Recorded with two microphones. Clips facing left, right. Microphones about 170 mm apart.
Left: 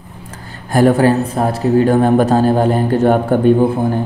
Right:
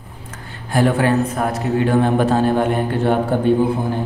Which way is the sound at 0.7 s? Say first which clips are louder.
Left 5 dB; 45° left (ahead or behind).